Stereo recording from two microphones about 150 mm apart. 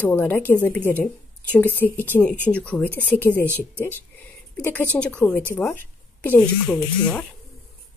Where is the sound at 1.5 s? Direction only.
15° left (ahead or behind).